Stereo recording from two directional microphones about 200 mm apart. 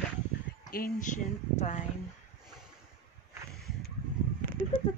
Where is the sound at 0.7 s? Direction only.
45° left (ahead or behind).